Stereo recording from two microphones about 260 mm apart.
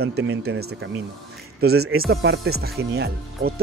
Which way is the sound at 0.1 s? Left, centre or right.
Right.